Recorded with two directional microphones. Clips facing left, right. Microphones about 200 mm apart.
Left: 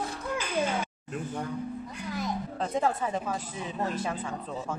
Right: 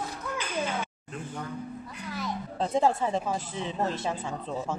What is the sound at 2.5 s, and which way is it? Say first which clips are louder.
Speech: right 4 dB; 30° right (ahead or behind).